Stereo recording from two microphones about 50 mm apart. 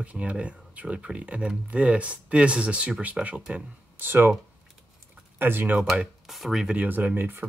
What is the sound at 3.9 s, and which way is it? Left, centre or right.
Speech, right.